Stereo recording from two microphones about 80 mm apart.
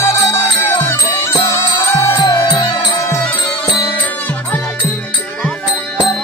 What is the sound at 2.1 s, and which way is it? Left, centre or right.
Music, left.